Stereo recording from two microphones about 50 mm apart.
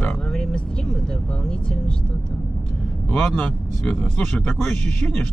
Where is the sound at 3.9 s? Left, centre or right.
Left.